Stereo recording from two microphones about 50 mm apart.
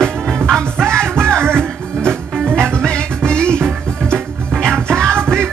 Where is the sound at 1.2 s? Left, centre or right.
Right.